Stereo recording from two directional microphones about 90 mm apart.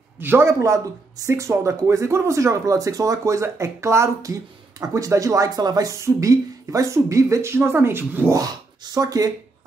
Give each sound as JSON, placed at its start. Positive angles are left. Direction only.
{"t": 0.2, "sound": "speech", "side_deg": -25}
{"t": 8.3, "sound": "speech", "side_deg": -40}